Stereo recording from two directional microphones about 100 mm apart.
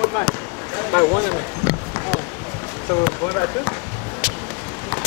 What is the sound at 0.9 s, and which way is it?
Speech, 30° left (ahead or behind).